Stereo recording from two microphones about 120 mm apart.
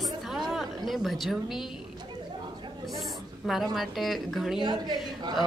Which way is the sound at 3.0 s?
Centre (ahead or behind).